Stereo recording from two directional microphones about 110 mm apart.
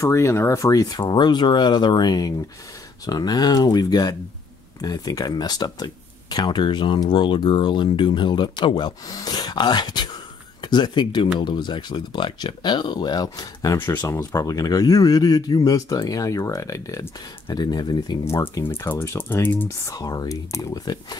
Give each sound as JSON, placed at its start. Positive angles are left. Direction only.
{"t": 0.0, "sound": "speech", "side_deg": 25}
{"t": 13.7, "sound": "speech", "side_deg": 20}
{"t": 18.2, "sound": "speech", "side_deg": 25}
{"t": 19.9, "sound": "speech", "side_deg": 35}